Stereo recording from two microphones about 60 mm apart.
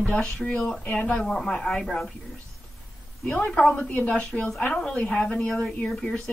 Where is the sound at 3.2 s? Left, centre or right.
Centre.